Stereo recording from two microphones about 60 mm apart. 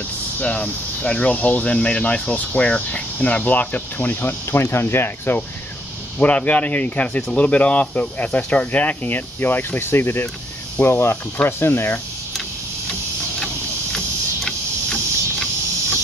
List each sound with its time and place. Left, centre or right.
0.4 s speech: left
6.1 s speech: left
13.9 s a sound: centre